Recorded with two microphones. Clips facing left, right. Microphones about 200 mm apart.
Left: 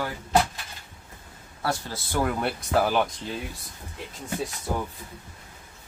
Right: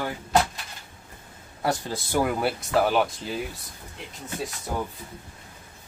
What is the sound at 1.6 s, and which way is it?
Speech, 15° right (ahead or behind).